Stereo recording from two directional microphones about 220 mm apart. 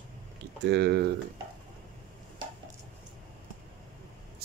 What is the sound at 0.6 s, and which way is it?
Speech, 50° right (ahead or behind).